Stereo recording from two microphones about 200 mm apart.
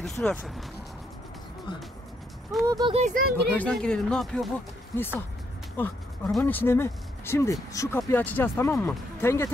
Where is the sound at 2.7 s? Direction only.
20° right (ahead or behind).